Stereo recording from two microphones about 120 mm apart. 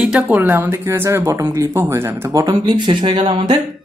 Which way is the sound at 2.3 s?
35° right (ahead or behind).